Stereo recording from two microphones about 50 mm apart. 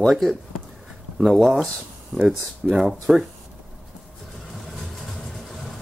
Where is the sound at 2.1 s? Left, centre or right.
Centre.